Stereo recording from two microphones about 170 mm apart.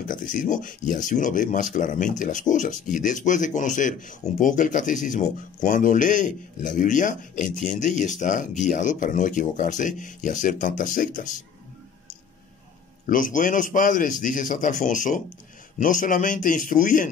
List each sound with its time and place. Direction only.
0.1 s speech: 50° left (ahead or behind)
13.0 s speech: 50° left (ahead or behind)